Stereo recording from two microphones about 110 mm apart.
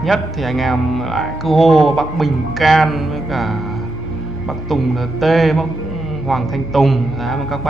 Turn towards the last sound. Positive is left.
turn(degrees=0)  # may be behind; listen again after turning